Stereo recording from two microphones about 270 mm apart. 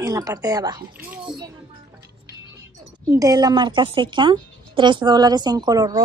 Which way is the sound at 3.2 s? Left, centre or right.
Centre.